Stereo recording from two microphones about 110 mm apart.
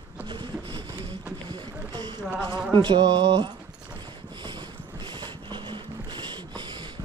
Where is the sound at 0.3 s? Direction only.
45° right (ahead or behind).